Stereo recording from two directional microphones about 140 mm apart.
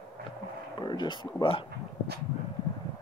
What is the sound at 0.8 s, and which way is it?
Speech, 35° left (ahead or behind).